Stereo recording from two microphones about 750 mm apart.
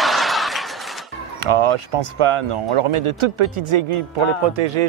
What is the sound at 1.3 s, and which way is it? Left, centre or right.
Speech, right.